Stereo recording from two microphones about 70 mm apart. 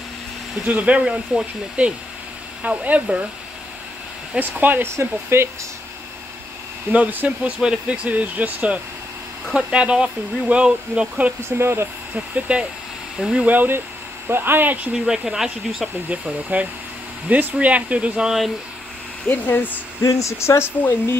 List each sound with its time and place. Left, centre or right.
0.7 s speech: centre
4.3 s speech: right
4.9 s speech: right
6.9 s speech: right
9.5 s speech: centre
11.4 s speech: right
12.4 s speech: centre
13.5 s speech: right
15.0 s speech: centre
16.1 s speech: right
19.2 s speech: left
20.0 s speech: left